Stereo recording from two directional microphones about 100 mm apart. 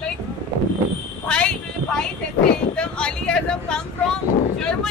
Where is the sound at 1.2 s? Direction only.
10° left (ahead or behind).